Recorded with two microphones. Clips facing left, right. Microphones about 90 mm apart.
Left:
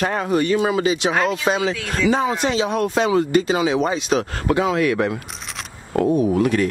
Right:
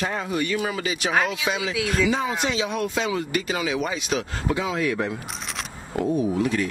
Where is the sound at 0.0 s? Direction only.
60° left (ahead or behind).